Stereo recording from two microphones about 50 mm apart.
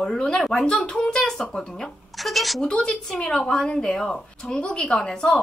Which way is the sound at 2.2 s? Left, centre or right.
Centre.